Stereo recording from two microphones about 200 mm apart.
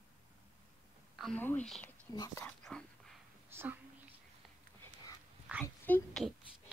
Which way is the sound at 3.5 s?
10° right (ahead or behind).